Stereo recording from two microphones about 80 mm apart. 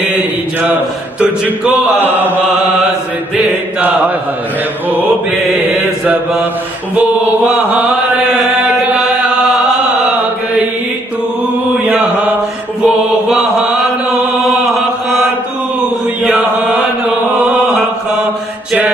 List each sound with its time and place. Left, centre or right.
0.2 s mantra: right
1.2 s a sound: centre
7.0 s mantra: right
11.7 s mantra: centre
12.8 s mantra: centre
16.3 s chant: centre